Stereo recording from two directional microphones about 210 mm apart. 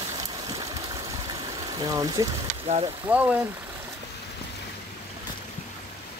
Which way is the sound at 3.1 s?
5° right (ahead or behind).